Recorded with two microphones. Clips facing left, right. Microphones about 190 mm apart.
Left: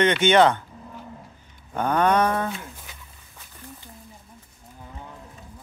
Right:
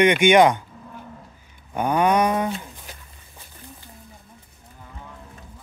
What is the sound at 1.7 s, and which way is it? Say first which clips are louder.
Speech: right 1 dB; 10° right (ahead or behind).